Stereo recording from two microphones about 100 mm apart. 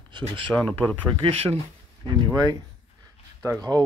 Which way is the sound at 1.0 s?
60° right (ahead or behind).